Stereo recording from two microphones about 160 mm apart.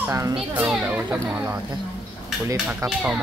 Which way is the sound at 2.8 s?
20° right (ahead or behind).